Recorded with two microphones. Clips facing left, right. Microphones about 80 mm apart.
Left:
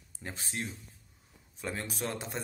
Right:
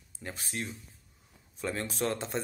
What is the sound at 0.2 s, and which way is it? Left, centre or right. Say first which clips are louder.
Speech: right 1 dB; left.